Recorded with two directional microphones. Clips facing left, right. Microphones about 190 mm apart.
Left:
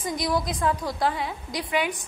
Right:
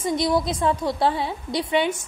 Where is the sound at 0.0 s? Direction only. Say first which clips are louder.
Right 5 dB; 25° right (ahead or behind).